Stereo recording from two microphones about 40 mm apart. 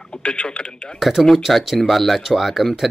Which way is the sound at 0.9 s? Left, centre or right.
Centre.